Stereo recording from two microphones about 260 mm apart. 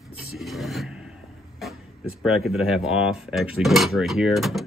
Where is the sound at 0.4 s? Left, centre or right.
Centre.